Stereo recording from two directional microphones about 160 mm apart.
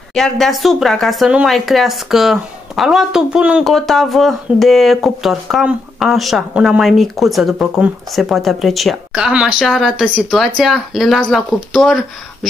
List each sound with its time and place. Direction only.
0.1 s speech: 5° left (ahead or behind)